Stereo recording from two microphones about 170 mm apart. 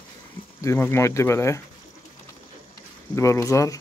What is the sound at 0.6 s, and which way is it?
Speech, 15° left (ahead or behind).